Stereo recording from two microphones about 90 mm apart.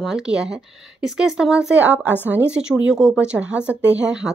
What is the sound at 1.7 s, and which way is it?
Speech, 15° right (ahead or behind).